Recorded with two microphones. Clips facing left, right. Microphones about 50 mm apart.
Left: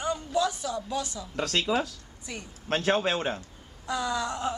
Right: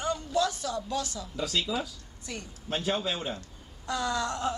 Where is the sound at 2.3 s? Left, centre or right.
Centre.